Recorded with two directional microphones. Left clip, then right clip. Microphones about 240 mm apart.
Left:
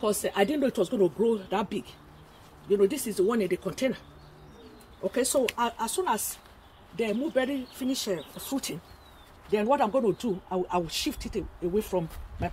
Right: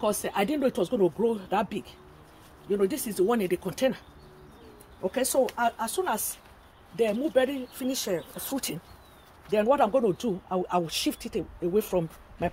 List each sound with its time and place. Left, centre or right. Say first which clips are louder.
0.0 s speech: left 1 dB; right
5.1 s speech: right 1 dB; right